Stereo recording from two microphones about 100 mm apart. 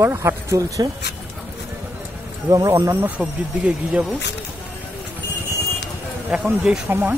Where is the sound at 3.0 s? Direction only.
10° right (ahead or behind).